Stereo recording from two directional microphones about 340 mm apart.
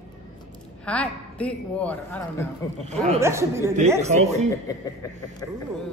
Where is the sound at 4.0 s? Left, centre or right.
Centre.